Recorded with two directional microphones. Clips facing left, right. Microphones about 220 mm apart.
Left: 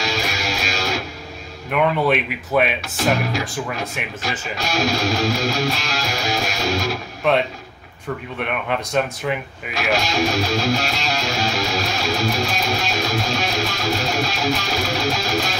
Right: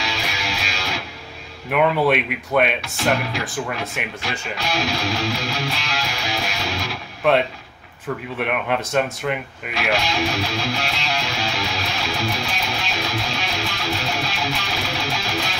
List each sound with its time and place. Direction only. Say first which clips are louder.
0.0 s music: left 4 dB; 45° left (ahead or behind)
1.7 s speech: right 1 dB; centre (ahead or behind)
4.2 s speech: left 1 dB; 45° left (ahead or behind)
7.2 s speech: right 1 dB; centre (ahead or behind)
9.8 s speech: left 2 dB; 45° left (ahead or behind)